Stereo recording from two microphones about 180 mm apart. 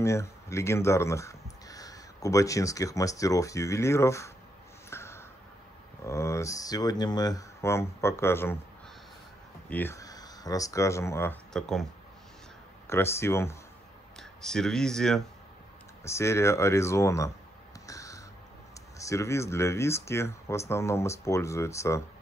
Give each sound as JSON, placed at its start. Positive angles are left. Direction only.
{"t": 0.0, "sound": "speech", "side_deg": 15}
{"t": 4.8, "sound": "a sound", "side_deg": 15}
{"t": 6.0, "sound": "speech", "side_deg": 15}
{"t": 9.7, "sound": "speech", "side_deg": 10}
{"t": 11.5, "sound": "speech", "side_deg": 0}
{"t": 12.8, "sound": "speech", "side_deg": 15}
{"t": 14.1, "sound": "speech", "side_deg": 5}
{"t": 16.0, "sound": "speech", "side_deg": 15}
{"t": 17.8, "sound": "a sound", "side_deg": 20}
{"t": 18.9, "sound": "speech", "side_deg": 15}